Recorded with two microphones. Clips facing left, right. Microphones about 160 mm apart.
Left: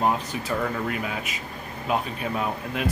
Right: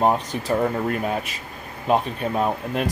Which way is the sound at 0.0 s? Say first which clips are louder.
Right 4 dB; 35° right (ahead or behind).